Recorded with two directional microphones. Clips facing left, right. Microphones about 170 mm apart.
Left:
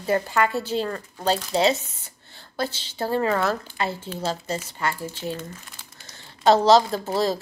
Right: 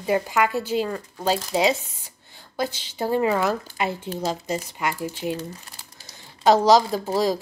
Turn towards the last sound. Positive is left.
turn(degrees=-10)  # may be behind; listen again after turning